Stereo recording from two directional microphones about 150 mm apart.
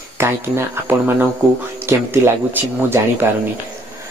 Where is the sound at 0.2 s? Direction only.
15° right (ahead or behind).